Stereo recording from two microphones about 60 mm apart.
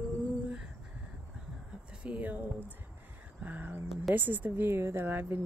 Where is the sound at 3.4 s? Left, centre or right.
Right.